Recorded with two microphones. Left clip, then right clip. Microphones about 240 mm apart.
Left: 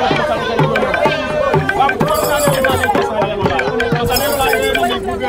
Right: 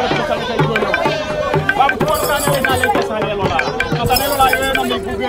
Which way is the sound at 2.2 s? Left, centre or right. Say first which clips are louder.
Left 2 dB; centre.